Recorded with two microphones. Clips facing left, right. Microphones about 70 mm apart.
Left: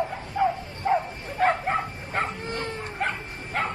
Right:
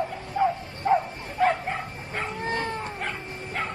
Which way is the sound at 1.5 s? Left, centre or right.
Left.